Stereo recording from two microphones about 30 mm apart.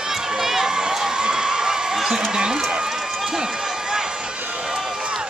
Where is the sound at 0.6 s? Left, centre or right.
Right.